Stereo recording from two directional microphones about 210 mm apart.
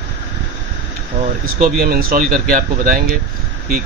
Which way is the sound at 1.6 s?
45° right (ahead or behind).